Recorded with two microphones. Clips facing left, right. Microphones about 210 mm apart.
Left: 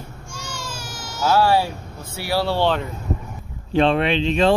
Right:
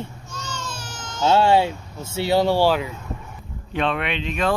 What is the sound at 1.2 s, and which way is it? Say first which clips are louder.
Speech: right 1 dB; 25° right (ahead or behind).